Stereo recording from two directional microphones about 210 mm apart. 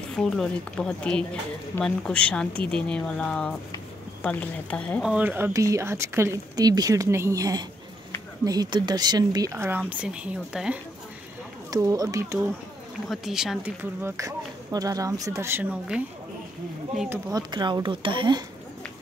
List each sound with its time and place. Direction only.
0.1 s speech: 5° left (ahead or behind)
5.1 s speech: 10° right (ahead or behind)
11.7 s speech: 15° right (ahead or behind)
13.1 s speech: centre (ahead or behind)
17.3 s speech: 20° right (ahead or behind)